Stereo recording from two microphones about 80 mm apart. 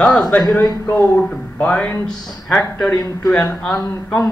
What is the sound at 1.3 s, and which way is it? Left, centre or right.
Speech, centre.